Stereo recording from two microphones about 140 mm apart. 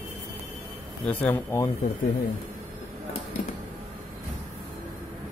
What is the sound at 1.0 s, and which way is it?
Speech, 15° left (ahead or behind).